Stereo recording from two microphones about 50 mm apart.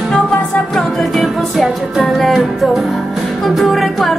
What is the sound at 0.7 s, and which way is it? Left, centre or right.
Music, centre.